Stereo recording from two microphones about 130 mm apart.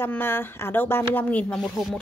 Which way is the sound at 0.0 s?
15° left (ahead or behind).